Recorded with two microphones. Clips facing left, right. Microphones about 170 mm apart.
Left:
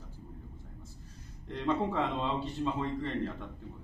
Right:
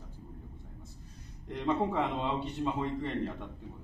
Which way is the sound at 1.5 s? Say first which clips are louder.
Right 1 dB; 15° right (ahead or behind).